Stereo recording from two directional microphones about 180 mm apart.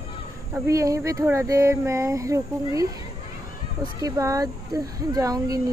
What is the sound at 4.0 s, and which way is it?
Speech, 20° right (ahead or behind).